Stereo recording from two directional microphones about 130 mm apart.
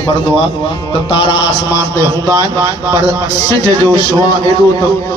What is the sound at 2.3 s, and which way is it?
Speech, 25° right (ahead or behind).